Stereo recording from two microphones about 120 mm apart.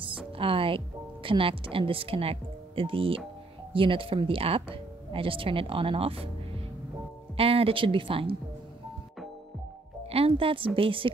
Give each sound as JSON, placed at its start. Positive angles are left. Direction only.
{"t": 0.4, "sound": "speech", "side_deg": -50}
{"t": 7.3, "sound": "speech", "side_deg": -55}
{"t": 10.1, "sound": "speech", "side_deg": -50}